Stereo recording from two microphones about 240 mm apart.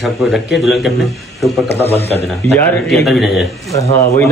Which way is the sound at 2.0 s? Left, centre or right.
Right.